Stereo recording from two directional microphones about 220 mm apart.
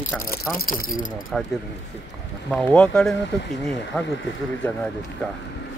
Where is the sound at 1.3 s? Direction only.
5° left (ahead or behind).